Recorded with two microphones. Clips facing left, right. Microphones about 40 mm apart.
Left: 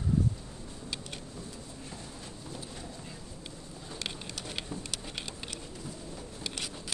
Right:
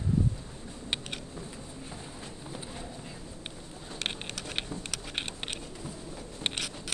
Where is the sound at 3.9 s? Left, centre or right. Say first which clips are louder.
Right 4 dB; right.